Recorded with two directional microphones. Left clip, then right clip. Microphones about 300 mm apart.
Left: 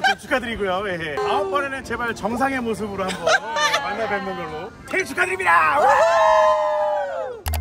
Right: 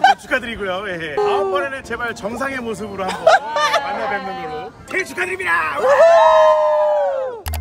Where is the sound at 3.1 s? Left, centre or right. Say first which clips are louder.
Right 7 dB; centre.